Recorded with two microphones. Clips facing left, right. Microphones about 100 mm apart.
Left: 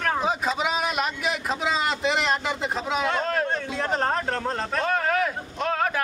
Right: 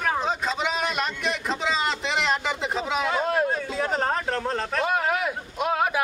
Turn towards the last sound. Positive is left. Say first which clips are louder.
# right 1 dB
turn(degrees=-10)  # may be behind; listen again after turning